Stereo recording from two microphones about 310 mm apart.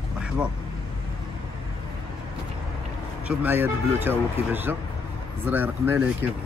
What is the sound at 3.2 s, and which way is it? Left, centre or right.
Speech, centre.